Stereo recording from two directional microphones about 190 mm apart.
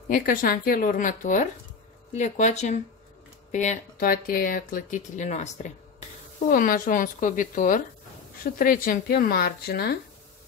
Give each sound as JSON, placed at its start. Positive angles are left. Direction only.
{"t": 0.1, "sound": "speech", "side_deg": 50}